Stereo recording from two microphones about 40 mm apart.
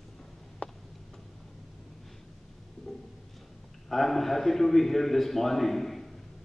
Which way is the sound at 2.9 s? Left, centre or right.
Centre.